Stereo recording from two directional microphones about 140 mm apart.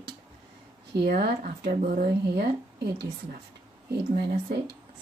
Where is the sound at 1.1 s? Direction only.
85° right.